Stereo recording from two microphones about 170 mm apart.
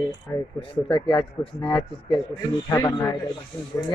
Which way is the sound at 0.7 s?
30° left (ahead or behind).